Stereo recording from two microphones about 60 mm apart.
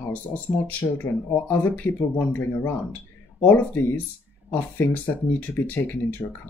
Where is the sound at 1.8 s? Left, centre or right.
Left.